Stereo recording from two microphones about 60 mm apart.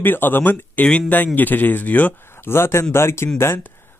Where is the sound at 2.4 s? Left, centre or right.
Left.